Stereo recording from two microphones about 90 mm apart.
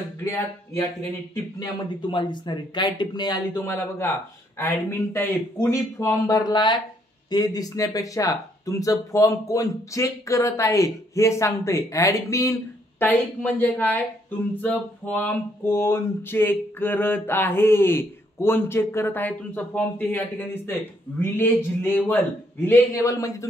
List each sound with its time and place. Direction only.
0.2 s speech: 30° left (ahead or behind)
2.0 s speech: 60° left (ahead or behind)
3.5 s a sound: 25° left (ahead or behind)
5.1 s speech: 30° left (ahead or behind)
6.3 s speech: 50° left (ahead or behind); by 12.5 s 35° left (ahead or behind)
13.0 s a sound: 20° left (ahead or behind)
22.9 s speech: 40° left (ahead or behind)